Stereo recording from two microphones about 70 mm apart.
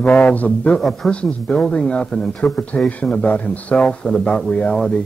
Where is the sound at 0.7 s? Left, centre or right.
Centre.